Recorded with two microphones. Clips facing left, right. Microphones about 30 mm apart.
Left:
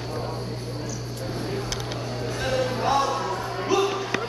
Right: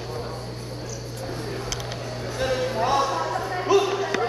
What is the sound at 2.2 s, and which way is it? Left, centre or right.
Music, centre.